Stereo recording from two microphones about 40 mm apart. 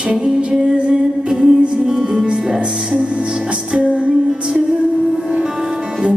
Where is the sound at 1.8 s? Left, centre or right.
Centre.